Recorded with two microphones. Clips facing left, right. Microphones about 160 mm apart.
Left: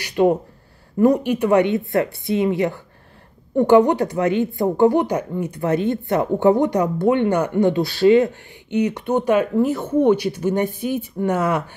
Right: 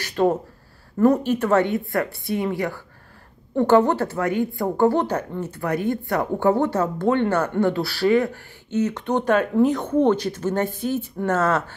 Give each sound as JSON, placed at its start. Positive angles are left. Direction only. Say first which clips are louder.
{"t": 0.0, "sound": "a woman's voice", "louder": "left 3 dB", "side_deg": 15}